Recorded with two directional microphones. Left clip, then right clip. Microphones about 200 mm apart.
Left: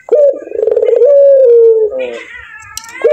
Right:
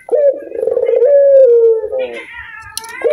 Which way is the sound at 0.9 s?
Centre (ahead or behind).